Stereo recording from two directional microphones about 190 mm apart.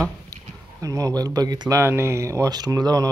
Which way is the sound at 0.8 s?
20° right (ahead or behind).